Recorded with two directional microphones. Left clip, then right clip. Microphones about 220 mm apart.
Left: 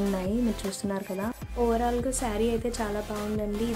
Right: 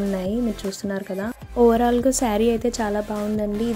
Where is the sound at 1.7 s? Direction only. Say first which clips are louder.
Right 8 dB; 35° right (ahead or behind).